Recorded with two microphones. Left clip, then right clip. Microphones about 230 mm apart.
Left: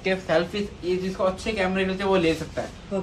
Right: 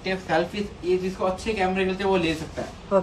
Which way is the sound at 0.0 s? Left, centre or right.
Left.